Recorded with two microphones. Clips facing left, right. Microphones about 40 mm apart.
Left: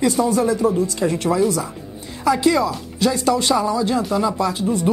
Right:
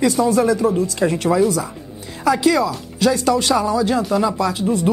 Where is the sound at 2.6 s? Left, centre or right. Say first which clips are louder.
Right 2 dB; centre.